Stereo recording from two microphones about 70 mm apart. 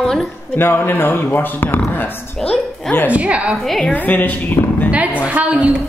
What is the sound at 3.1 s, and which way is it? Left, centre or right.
Speech, centre.